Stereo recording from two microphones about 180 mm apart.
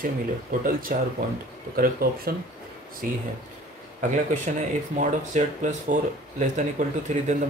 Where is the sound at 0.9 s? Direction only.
50° right (ahead or behind).